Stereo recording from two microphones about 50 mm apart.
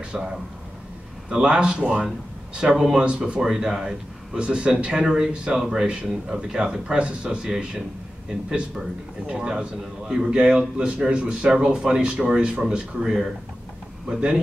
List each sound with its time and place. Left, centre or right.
0.1 s a man's voice: centre
1.3 s a man's voice: centre
5.3 s a man's voice: right